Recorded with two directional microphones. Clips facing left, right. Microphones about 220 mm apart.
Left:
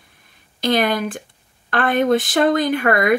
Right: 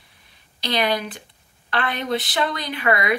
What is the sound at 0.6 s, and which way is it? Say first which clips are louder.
Speech: left 5 dB; 50° left (ahead or behind).